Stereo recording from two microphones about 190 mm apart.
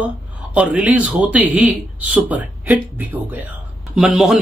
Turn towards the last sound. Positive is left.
turn(degrees=0)  # may be behind; listen again after turning